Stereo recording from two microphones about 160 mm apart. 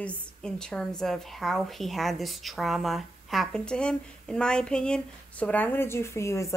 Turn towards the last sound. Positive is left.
turn(degrees=20)  # may be behind; listen again after turning